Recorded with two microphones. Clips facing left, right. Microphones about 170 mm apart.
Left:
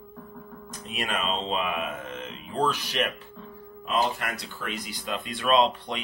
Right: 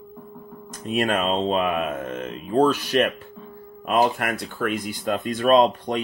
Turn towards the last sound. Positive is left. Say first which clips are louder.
# right 6 dB
turn(degrees=-45)  # may be behind; listen again after turning